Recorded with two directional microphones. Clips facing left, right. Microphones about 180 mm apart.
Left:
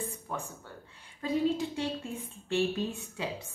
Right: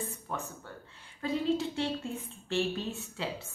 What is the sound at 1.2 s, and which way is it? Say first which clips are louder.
A woman's voice: left 1 dB; 15° left (ahead or behind).